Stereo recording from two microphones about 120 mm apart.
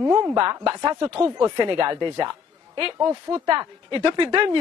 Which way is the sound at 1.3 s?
35° right (ahead or behind).